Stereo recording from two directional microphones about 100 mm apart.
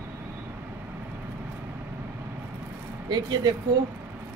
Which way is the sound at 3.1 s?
45° right (ahead or behind).